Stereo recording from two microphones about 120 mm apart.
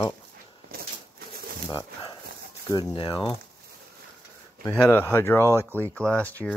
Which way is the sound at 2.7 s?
45° left (ahead or behind).